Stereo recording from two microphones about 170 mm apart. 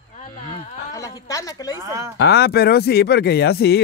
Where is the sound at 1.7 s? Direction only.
20° right (ahead or behind).